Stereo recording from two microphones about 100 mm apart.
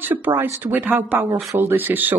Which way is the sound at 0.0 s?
20° right (ahead or behind).